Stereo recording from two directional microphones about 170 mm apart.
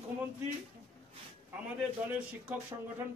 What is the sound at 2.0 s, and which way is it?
Speech, 10° right (ahead or behind).